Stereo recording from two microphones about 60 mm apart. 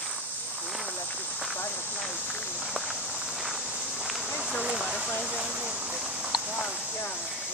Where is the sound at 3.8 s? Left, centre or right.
Centre.